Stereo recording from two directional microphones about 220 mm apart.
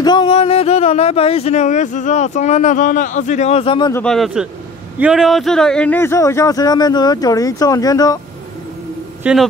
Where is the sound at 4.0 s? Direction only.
Centre (ahead or behind).